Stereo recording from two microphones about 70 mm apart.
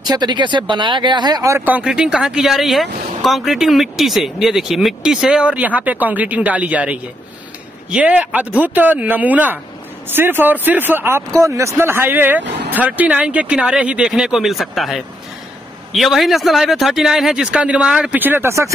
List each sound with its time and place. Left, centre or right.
0.0 s speech: right
1.6 s speech: right
11.4 s speech: right; by 18.2 s centre
18.2 s speech: right